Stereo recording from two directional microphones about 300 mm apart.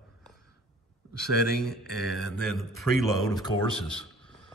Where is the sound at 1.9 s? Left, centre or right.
Centre.